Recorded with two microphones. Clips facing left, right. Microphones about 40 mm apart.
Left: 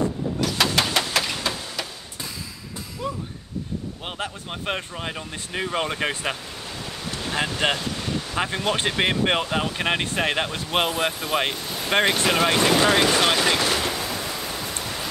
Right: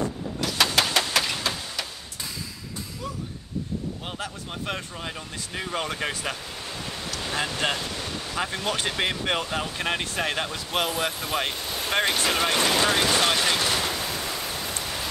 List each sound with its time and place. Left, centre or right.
0.0 s vehicle: centre
4.0 s speech: left
7.7 s wind: centre
8.4 s speech: left
11.5 s a sound: centre
11.9 s a sound: centre